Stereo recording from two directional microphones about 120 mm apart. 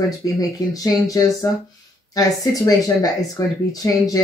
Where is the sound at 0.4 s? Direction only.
30° left (ahead or behind).